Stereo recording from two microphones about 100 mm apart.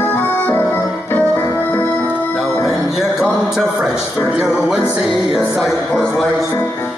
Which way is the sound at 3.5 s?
5° right (ahead or behind).